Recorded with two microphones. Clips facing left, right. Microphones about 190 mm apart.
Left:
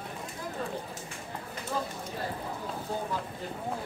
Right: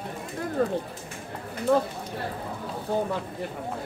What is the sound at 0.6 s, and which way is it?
Speech, 55° right (ahead or behind).